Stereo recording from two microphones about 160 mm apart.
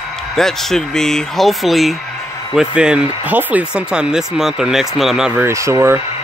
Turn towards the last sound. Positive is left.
turn(degrees=-20)  # may be behind; listen again after turning